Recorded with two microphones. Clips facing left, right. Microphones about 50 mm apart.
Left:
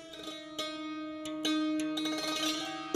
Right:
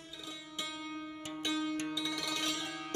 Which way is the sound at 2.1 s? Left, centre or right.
Left.